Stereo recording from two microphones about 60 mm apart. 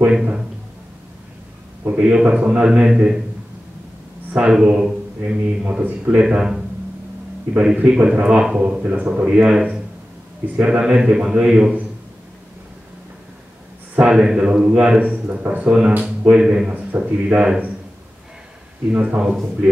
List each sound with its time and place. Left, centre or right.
0.0 s a man's voice: centre
1.9 s a man's voice: centre
2.7 s a man's voice: centre
4.4 s a man's voice: centre
4.6 s mantra: centre
5.7 s a man's voice: right
8.8 s a man's voice: right
13.9 s a man's voice: centre
16.0 s a man's voice: centre
17.3 s a man's voice: centre
18.9 s speech: centre